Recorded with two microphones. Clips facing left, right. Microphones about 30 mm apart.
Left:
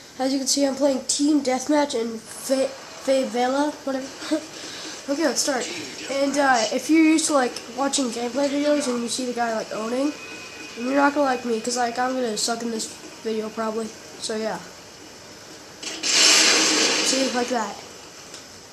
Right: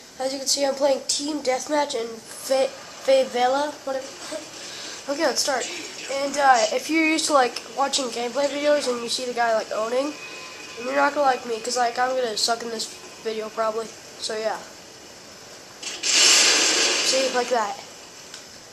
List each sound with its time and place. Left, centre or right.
0.4 s a woman's voice: centre
1.3 s a woman's voice: centre
2.5 s a woman's voice: centre
3.8 s a woman's voice: centre
4.6 s a sound: centre
5.0 s a woman's voice: centre
5.6 s a woman's voice: centre
6.7 s a woman's voice: centre
9.7 s a woman's voice: centre
12.3 s speech: right
15.8 s a sound: centre
17.0 s speech: centre